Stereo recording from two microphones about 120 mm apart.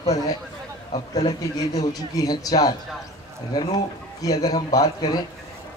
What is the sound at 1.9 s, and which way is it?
Speech, 30° left (ahead or behind).